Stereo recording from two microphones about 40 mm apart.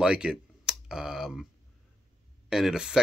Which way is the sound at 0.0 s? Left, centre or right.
Right.